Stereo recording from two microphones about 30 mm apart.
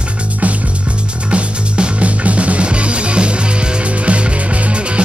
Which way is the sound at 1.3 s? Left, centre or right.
Right.